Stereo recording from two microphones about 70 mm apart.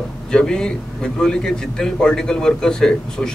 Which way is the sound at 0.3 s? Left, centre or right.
Centre.